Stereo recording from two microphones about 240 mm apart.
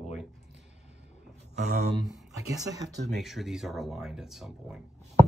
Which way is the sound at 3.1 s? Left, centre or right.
Centre.